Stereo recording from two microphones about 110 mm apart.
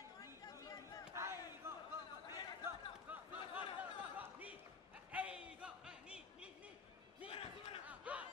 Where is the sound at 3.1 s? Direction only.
15° right (ahead or behind).